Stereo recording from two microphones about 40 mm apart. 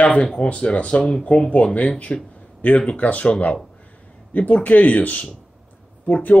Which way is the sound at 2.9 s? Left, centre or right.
Left.